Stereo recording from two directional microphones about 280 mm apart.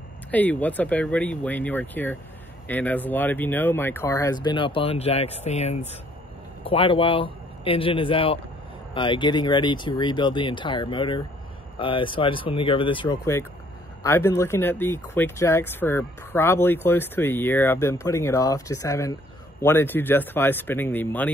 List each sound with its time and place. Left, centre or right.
0.3 s a man's voice: centre